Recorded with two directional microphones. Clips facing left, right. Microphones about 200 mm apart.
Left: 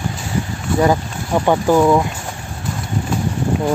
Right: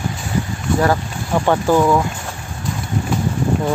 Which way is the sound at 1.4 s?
10° left (ahead or behind).